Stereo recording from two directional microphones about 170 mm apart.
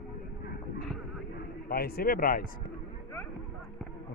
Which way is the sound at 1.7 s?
60° left (ahead or behind).